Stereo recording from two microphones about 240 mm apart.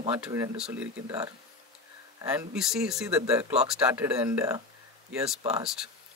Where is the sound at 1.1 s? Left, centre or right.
Centre.